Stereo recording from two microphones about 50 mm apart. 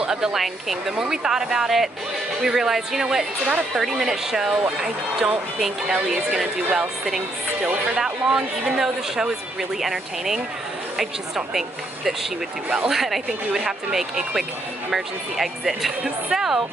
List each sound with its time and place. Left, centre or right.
0.0 s speech: centre
0.9 s speech: centre
6.0 s speech: centre
8.0 s speech: centre
12.6 s speech: centre
12.9 s speech: centre
16.0 s speech: centre